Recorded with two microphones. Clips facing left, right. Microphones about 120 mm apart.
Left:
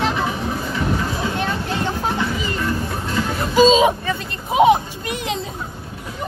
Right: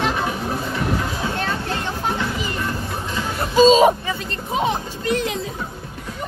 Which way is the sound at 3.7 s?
45° right (ahead or behind).